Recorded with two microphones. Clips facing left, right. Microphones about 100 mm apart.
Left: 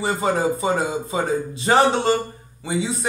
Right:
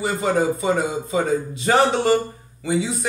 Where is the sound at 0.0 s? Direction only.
30° left (ahead or behind).